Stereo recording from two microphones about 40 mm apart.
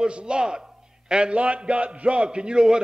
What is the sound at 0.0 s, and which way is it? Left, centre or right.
A man's voice, right.